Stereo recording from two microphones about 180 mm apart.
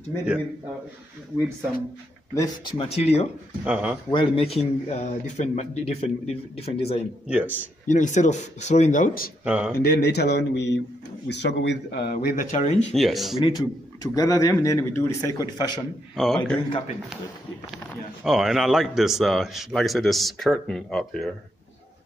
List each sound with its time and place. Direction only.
2.3 s speech: 25° left (ahead or behind)
3.6 s a man's voice: 10° right (ahead or behind)
4.1 s speech: 30° left (ahead or behind)
7.2 s a man's voice: 10° right (ahead or behind)
7.9 s speech: 45° left (ahead or behind)
9.4 s speech: 5° right (ahead or behind)
9.8 s a man's voice: 65° left (ahead or behind); by 12.7 s 45° left (ahead or behind)
12.7 s a man's voice: centre (ahead or behind)
13.4 s a man's voice: 25° left (ahead or behind)
16.2 s a man's voice: 5° left (ahead or behind)
18.2 s a man's voice: centre (ahead or behind)